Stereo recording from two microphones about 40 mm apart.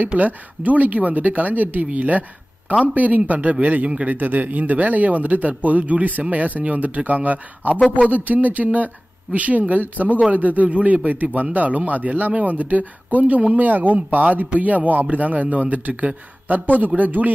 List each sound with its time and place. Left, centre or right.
0.2 s speech: right
15.9 s speech: right
16.4 s speech: right